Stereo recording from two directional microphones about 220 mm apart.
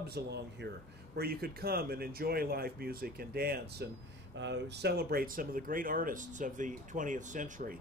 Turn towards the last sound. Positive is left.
turn(degrees=-40)  # may be behind; listen again after turning